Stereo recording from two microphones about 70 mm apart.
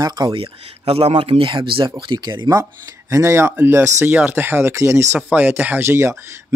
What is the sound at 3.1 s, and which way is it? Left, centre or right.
Speech, right.